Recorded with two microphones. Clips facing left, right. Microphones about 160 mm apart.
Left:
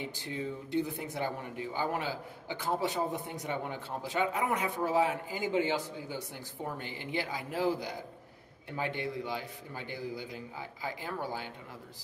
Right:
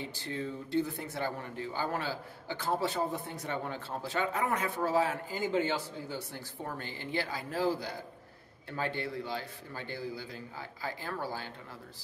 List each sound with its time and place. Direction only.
0.0 s speech: 15° left (ahead or behind)